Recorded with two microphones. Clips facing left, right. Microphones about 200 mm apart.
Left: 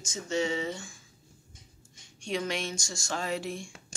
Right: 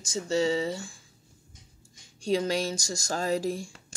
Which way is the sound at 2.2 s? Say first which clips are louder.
Right 6 dB; 35° right (ahead or behind).